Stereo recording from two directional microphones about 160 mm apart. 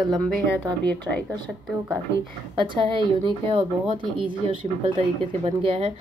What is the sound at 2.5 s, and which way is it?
A woman's voice, 30° right (ahead or behind).